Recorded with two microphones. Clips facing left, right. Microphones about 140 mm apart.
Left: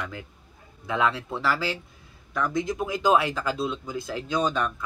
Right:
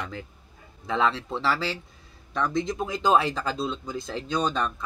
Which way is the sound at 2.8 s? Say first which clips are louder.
Even; 30° right (ahead or behind).